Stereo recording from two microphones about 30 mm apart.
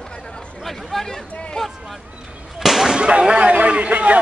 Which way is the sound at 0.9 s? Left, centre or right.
Centre.